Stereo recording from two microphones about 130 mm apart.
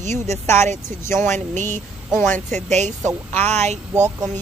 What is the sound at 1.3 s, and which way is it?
Speech, 70° right (ahead or behind).